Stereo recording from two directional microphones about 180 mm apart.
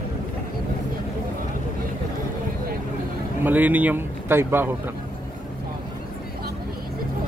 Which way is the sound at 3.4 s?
10° right (ahead or behind).